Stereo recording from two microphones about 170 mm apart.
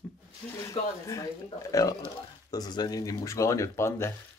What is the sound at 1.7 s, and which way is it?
Speech, 20° left (ahead or behind).